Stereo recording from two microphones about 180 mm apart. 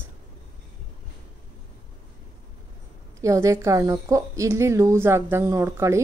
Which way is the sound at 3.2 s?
15° right (ahead or behind).